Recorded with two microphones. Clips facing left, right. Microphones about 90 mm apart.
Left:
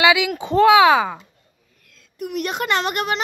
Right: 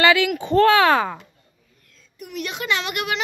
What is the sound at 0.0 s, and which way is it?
Speech, 15° left (ahead or behind).